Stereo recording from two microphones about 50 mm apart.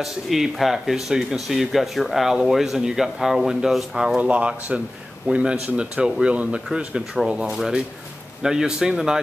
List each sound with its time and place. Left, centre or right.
0.0 s speech: centre
4.2 s speech: right
7.5 s speech: centre